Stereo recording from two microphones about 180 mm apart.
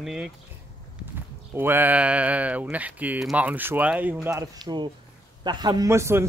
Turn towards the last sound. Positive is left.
turn(degrees=-15)  # may be behind; listen again after turning